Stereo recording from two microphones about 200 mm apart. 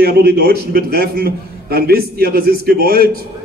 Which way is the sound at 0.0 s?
50° right (ahead or behind).